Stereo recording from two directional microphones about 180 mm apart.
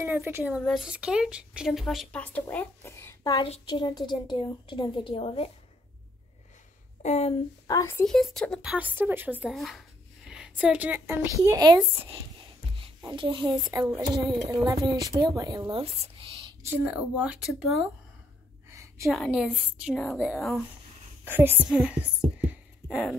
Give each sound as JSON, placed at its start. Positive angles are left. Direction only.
{"t": 0.0, "sound": "speech", "side_deg": -15}
{"t": 3.4, "sound": "a woman's voice", "side_deg": 30}
{"t": 7.0, "sound": "speech", "side_deg": 40}
{"t": 7.6, "sound": "a woman's voice", "side_deg": 20}
{"t": 8.0, "sound": "speech", "side_deg": 0}
{"t": 8.7, "sound": "a woman's voice", "side_deg": -10}
{"t": 15.7, "sound": "speech", "side_deg": -30}
{"t": 16.6, "sound": "a woman's voice", "side_deg": -10}
{"t": 18.7, "sound": "a sound", "side_deg": -15}
{"t": 19.0, "sound": "speech", "side_deg": 0}